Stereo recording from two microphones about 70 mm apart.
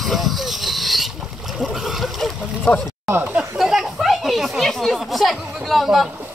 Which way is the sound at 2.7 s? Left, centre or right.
Centre.